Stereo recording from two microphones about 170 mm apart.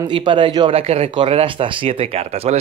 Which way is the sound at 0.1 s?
30° right (ahead or behind).